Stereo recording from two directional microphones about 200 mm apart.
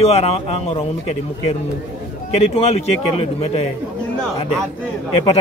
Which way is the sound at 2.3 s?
30° left (ahead or behind).